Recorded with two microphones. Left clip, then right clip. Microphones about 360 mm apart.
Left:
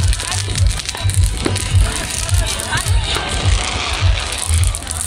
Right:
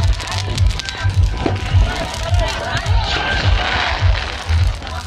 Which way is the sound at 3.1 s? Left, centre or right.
Right.